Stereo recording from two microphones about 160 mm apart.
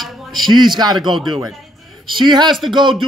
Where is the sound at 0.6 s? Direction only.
25° right (ahead or behind).